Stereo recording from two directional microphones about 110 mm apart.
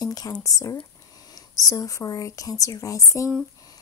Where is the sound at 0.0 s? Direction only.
35° left (ahead or behind).